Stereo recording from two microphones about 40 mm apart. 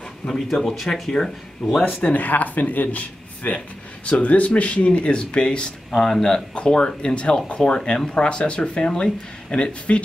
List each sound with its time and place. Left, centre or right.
0.3 s speech: centre
2.0 s speech: left
5.9 s speech: centre
6.5 s speech: left